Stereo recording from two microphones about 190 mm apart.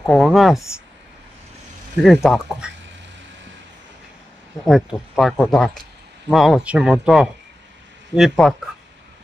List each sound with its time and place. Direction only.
0.0 s speech: 5° left (ahead or behind)
2.0 s speech: centre (ahead or behind)
4.6 s speech: centre (ahead or behind)